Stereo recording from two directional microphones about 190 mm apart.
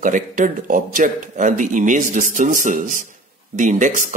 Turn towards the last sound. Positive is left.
turn(degrees=-45)  # may be behind; listen again after turning